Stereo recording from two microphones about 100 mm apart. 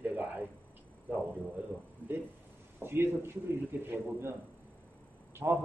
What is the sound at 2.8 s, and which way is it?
A man's voice, 25° right (ahead or behind).